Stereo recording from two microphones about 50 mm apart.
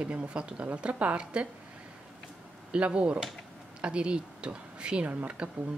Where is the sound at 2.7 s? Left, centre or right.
Right.